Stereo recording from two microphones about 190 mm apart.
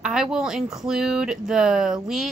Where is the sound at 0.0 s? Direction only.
5° right (ahead or behind).